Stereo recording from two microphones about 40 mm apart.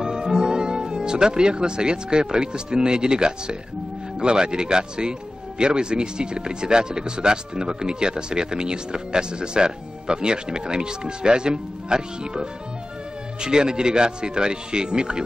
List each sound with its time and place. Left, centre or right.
0.0 s speech: centre